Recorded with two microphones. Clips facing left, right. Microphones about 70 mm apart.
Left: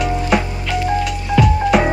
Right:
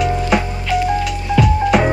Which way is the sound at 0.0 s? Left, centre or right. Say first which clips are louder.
Right 1 dB; centre.